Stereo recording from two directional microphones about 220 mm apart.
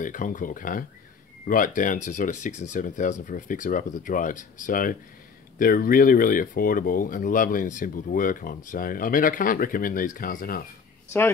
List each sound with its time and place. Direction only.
0.0 s speech: 35° left (ahead or behind)